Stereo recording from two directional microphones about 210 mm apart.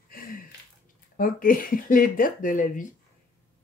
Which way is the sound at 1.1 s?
40° left (ahead or behind).